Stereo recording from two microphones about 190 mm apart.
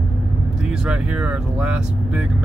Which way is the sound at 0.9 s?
5° right (ahead or behind).